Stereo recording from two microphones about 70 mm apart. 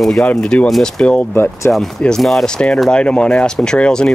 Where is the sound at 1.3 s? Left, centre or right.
Left.